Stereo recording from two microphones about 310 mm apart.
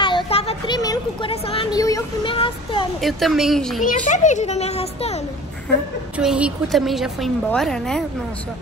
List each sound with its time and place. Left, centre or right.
0.0 s speech: centre
3.0 s a woman's voice: centre
3.8 s a child's voice: left
6.1 s a woman's voice: centre